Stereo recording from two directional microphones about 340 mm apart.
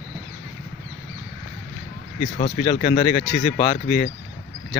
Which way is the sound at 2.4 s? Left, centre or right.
Centre.